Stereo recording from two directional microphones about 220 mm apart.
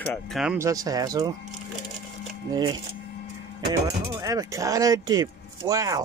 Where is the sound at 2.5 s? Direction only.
20° right (ahead or behind).